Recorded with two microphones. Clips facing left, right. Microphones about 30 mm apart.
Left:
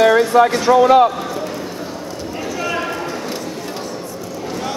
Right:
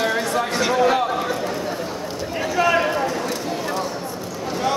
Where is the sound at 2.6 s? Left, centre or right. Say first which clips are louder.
Right 5 dB; centre.